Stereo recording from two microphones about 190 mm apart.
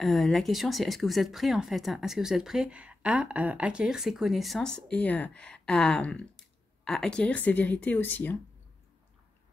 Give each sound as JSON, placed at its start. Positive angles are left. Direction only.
{"t": 0.0, "sound": "speech", "side_deg": 0}